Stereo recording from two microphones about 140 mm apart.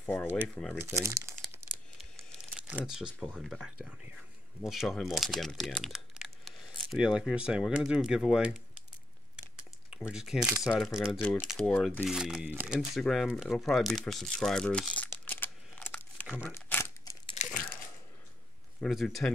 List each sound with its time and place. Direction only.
0.0 s speech: 15° left (ahead or behind)
1.0 s speech: 20° right (ahead or behind)
2.5 s speech: 5° right (ahead or behind)
10.0 s speech: 5° right (ahead or behind); by 16.3 s 10° left (ahead or behind)
16.7 s crumpling: 10° left (ahead or behind)
17.5 s a sound: 10° left (ahead or behind)
18.8 s speech: centre (ahead or behind)